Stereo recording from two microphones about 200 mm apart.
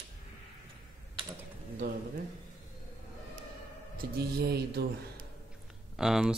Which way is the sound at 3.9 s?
55° right (ahead or behind).